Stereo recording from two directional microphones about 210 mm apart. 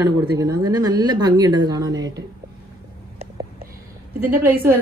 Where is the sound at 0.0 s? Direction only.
15° right (ahead or behind).